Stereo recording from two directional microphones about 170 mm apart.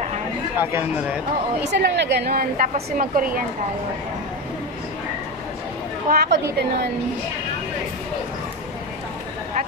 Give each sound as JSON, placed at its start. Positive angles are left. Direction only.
{"t": 0.6, "sound": "speech", "side_deg": -15}
{"t": 1.6, "sound": "a woman's voice", "side_deg": -85}
{"t": 6.0, "sound": "a woman's voice", "side_deg": -70}